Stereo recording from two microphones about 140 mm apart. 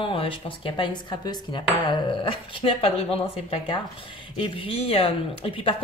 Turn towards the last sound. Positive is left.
turn(degrees=40)  # may be behind; listen again after turning